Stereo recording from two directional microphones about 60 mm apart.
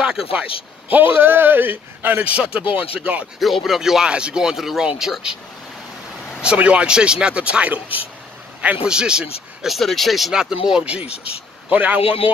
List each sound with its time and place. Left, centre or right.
0.0 s a sound: centre
0.9 s a man's voice: right
3.3 s speech: centre
6.4 s speech: right
9.7 s speech: centre; by 12.2 s right